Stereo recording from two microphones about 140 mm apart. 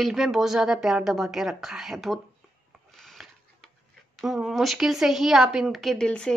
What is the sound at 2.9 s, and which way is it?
Filing, centre (ahead or behind).